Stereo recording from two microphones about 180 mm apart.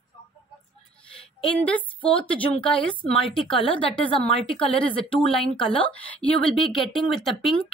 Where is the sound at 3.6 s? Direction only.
30° left (ahead or behind).